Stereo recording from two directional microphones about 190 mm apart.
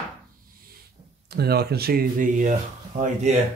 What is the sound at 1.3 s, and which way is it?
Speech, 55° right (ahead or behind).